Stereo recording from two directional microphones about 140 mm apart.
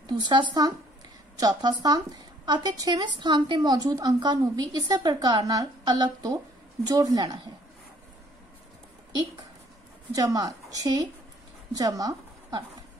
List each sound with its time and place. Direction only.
0.0 s a woman's voice: 35° right (ahead or behind)
10.1 s speech: 25° right (ahead or behind)